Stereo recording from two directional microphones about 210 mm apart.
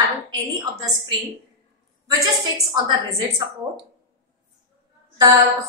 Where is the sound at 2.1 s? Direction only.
20° right (ahead or behind).